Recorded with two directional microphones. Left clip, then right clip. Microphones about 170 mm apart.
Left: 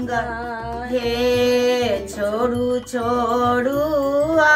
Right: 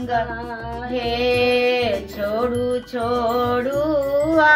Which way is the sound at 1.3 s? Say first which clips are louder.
Even; 50° left (ahead or behind).